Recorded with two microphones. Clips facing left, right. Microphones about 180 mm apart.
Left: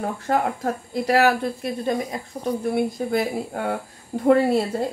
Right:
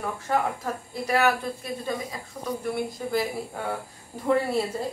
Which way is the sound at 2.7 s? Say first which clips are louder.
Left 4 dB; 60° left (ahead or behind).